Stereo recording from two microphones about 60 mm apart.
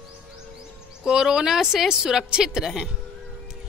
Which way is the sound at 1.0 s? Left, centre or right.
Centre.